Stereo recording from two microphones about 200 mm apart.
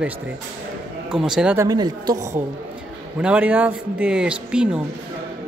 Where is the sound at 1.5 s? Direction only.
20° right (ahead or behind).